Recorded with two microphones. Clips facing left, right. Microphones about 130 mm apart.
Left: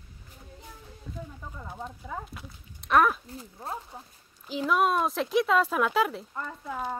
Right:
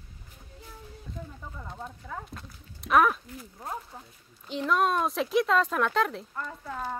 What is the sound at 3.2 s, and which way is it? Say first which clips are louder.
Speech: left 1 dB; 30° left (ahead or behind).